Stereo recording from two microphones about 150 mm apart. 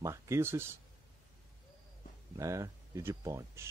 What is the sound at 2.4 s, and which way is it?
A man's voice, 20° right (ahead or behind).